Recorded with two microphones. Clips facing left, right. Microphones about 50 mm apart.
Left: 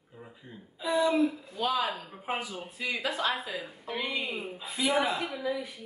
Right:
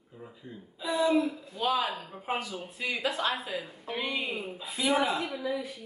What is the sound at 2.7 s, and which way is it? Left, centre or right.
A woman's voice, centre.